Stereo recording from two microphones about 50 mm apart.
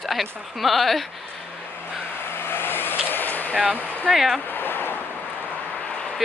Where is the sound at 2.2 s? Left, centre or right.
Left.